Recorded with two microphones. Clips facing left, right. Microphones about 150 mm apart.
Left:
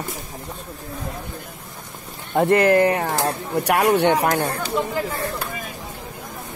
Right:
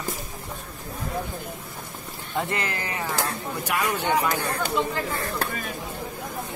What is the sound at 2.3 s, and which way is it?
Speech, 55° left (ahead or behind).